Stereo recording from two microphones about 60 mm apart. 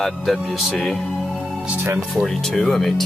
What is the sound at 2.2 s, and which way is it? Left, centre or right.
Speech, centre.